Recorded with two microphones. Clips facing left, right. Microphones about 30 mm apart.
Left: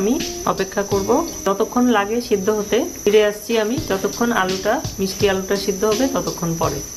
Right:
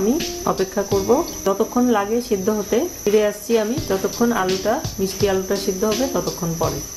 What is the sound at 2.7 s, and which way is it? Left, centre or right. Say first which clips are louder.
Speech: left 3 dB; left.